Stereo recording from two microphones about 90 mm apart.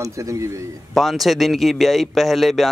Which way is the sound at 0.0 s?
35° right (ahead or behind).